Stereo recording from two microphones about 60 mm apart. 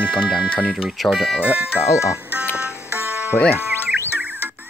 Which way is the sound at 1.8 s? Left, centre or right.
Left.